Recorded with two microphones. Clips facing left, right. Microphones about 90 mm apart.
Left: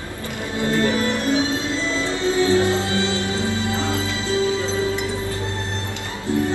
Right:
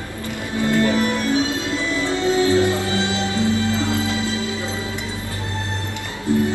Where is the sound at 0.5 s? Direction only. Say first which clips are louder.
Right 2 dB; 20° left (ahead or behind).